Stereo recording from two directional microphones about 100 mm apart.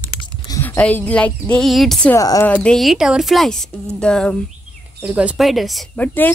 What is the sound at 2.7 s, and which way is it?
A woman's voice, centre (ahead or behind).